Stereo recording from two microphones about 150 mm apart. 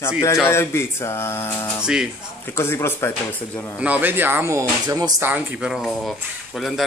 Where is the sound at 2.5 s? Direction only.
15° left (ahead or behind).